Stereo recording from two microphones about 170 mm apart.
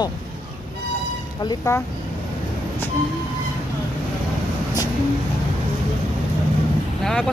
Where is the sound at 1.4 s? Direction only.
20° left (ahead or behind).